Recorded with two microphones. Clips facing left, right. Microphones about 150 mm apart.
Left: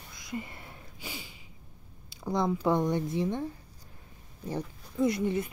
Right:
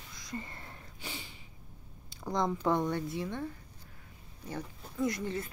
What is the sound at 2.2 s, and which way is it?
Speech, 10° left (ahead or behind).